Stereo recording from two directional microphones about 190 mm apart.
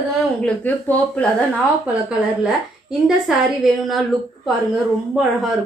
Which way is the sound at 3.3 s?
5° right (ahead or behind).